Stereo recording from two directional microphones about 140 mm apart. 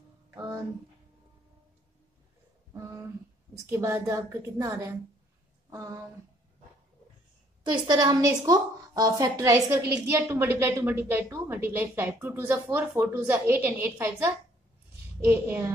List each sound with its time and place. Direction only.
2.7 s a sound: 25° right (ahead or behind)
3.6 s a woman's voice: 20° right (ahead or behind)
7.6 s a woman's voice: 35° right (ahead or behind); by 15.7 s 15° right (ahead or behind)